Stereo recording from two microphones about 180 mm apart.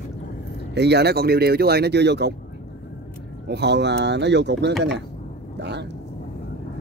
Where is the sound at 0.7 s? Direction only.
70° right (ahead or behind).